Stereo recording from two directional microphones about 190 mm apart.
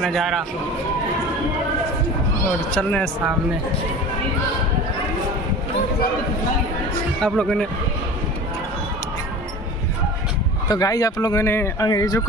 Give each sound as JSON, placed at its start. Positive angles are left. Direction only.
{"t": 0.0, "sound": "speech", "side_deg": 0}
{"t": 7.2, "sound": "speech", "side_deg": 5}
{"t": 10.7, "sound": "speech", "side_deg": 20}